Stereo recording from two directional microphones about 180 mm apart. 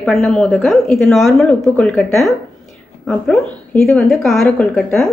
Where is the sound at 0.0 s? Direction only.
Centre (ahead or behind).